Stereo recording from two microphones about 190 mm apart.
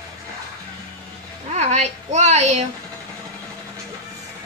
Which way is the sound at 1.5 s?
35° right (ahead or behind).